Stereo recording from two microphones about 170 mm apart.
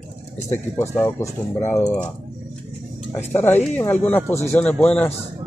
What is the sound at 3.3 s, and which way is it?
Speech, 10° left (ahead or behind).